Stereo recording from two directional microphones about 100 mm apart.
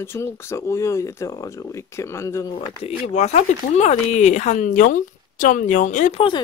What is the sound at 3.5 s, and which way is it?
Speech, 90° left.